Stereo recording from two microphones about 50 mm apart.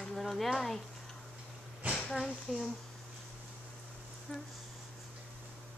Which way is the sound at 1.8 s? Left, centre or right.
Right.